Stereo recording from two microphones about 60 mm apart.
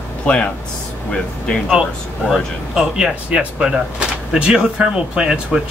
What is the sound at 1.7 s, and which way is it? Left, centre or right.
Speech, centre.